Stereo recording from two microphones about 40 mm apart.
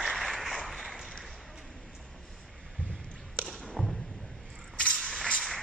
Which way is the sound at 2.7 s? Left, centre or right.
Left.